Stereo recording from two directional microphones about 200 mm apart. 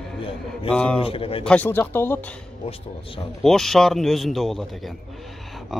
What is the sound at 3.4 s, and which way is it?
Speech, centre (ahead or behind).